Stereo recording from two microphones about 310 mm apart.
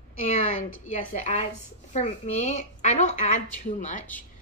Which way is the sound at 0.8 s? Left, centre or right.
Left.